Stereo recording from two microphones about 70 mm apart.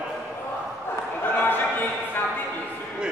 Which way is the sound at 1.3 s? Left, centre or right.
Left.